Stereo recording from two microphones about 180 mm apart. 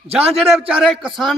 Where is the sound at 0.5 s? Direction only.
Centre (ahead or behind).